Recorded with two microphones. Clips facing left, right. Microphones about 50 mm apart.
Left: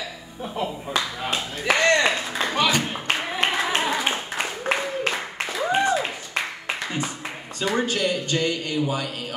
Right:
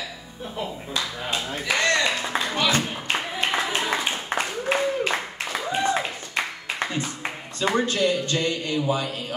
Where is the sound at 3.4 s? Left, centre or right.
Left.